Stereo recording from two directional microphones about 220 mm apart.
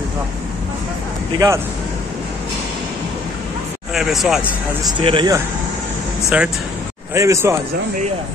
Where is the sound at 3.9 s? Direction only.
Centre (ahead or behind).